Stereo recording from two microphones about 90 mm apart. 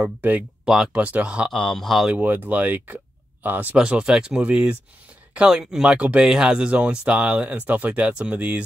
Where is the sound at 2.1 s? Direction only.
20° right (ahead or behind).